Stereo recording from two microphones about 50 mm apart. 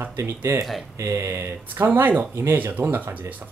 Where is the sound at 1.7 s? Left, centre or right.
Right.